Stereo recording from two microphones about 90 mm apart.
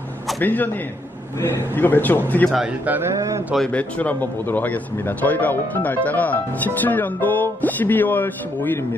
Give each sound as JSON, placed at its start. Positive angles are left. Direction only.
{"t": 0.4, "sound": "a man's voice", "side_deg": 20}
{"t": 2.8, "sound": "speech", "side_deg": -20}
{"t": 3.2, "sound": "speech", "side_deg": -35}
{"t": 3.5, "sound": "a man's voice", "side_deg": 10}